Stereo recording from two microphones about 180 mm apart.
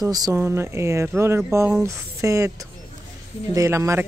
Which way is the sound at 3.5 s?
15° right (ahead or behind).